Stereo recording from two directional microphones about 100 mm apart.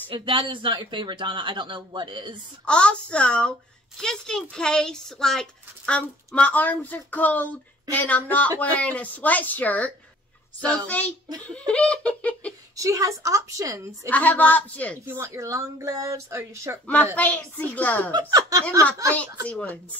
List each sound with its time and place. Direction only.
0.1 s speech: 60° right (ahead or behind)
2.6 s speech: 10° left (ahead or behind)
12.7 s speech: 35° right (ahead or behind)
14.0 s speech: 15° left (ahead or behind)
15.0 s speech: 25° right (ahead or behind)
16.8 s speech: 15° left (ahead or behind)
18.1 s speech: 35° right (ahead or behind)
19.4 s speech: 15° left (ahead or behind)